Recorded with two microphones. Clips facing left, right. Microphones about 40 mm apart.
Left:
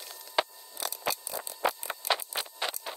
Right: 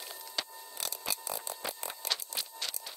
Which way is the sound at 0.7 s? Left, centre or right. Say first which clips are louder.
Left 6 dB; centre.